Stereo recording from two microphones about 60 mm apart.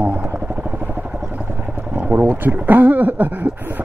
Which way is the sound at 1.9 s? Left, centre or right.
Right.